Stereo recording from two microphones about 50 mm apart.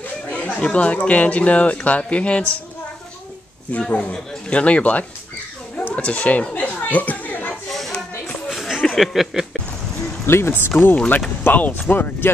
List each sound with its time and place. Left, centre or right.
0.6 s speech: left
3.9 s speech: left
5.9 s chatter: left
7.7 s a sound: centre
8.5 s a sound: centre
10.2 s speech: left
10.7 s speech: left